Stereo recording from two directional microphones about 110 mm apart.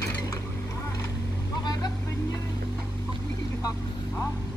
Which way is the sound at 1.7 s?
35° left (ahead or behind).